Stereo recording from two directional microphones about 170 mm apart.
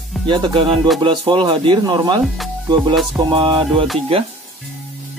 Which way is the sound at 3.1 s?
30° right (ahead or behind).